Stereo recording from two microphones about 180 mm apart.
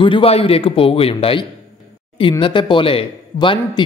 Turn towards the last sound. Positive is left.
turn(degrees=30)  # may be behind; listen again after turning